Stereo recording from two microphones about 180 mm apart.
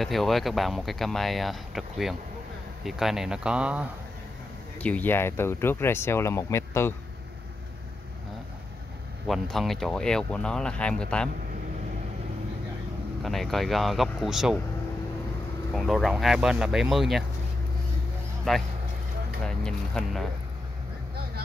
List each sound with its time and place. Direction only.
0.0 s speech: centre (ahead or behind)
4.7 s speech: 5° left (ahead or behind)
9.3 s speech: centre (ahead or behind)
13.2 s speech: centre (ahead or behind)
15.7 s speech: centre (ahead or behind)
18.5 s speech: 5° left (ahead or behind)